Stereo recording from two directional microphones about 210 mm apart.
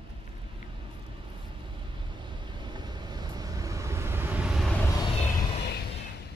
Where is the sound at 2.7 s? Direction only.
20° right (ahead or behind); by 5.1 s 15° left (ahead or behind).